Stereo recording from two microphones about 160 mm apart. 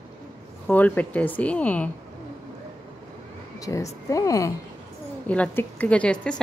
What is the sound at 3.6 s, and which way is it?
Speech, 20° left (ahead or behind).